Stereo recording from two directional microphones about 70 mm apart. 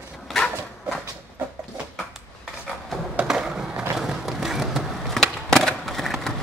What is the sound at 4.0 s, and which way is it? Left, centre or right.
Skateboard, centre.